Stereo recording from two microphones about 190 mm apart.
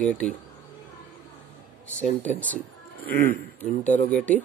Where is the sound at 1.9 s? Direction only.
5° left (ahead or behind).